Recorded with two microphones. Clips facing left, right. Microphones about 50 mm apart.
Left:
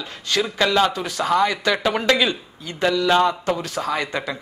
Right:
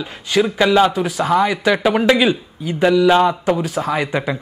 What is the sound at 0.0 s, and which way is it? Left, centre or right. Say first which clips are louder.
A man's voice: right 6 dB; centre.